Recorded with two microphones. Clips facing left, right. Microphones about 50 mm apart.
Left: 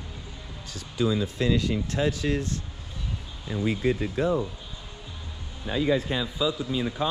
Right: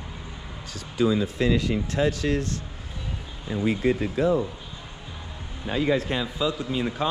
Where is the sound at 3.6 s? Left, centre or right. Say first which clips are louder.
Right 2 dB; right.